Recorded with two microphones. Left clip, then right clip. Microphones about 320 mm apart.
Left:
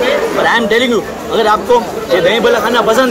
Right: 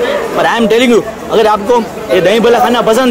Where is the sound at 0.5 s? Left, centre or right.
Right.